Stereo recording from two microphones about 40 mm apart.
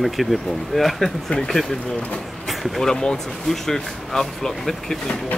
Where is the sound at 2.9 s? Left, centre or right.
Centre.